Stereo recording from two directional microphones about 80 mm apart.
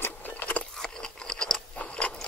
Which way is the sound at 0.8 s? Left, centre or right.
Centre.